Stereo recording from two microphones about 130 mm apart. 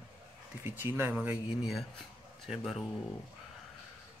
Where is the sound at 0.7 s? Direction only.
15° right (ahead or behind).